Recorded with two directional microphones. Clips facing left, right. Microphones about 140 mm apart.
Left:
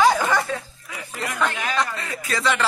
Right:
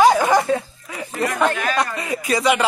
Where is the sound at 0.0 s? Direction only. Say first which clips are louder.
Right 4 dB; 15° right (ahead or behind).